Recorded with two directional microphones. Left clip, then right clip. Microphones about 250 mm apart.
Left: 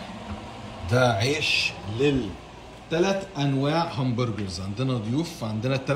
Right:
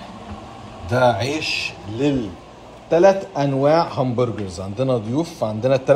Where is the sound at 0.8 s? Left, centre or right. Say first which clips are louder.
Right 5 dB; centre.